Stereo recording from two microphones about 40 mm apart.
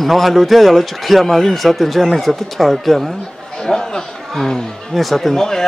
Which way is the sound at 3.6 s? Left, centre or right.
Centre.